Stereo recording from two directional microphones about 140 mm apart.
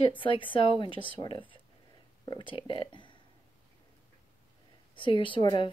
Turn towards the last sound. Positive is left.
turn(degrees=35)  # may be behind; listen again after turning